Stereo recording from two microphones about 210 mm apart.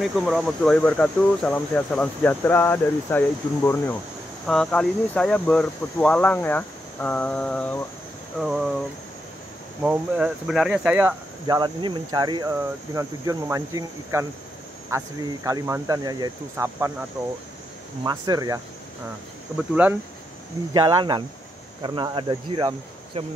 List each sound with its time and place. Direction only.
0.0 s speech: centre (ahead or behind)
9.8 s speech: 5° right (ahead or behind)
18.0 s speech: 20° right (ahead or behind)
19.7 s speech: 5° right (ahead or behind)
20.7 s speech: 20° right (ahead or behind)